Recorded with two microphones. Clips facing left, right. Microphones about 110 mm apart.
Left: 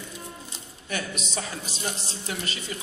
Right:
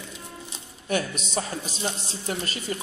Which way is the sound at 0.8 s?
45° right (ahead or behind).